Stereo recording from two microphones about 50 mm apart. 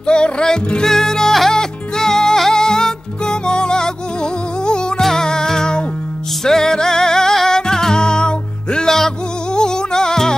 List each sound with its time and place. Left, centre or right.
0.0 s music: centre